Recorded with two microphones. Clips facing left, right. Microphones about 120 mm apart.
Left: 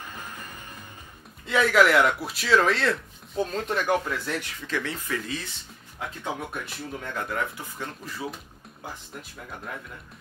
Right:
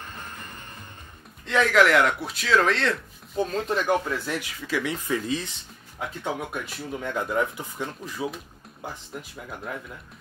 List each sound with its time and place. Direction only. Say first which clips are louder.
0.1 s music: even; 10° left (ahead or behind)
1.4 s speech: even; 5° left (ahead or behind); by 5.4 s 20° right (ahead or behind)
5.9 s speech: right 2 dB; 5° right (ahead or behind)
7.2 s speech: right 5 dB; 15° right (ahead or behind)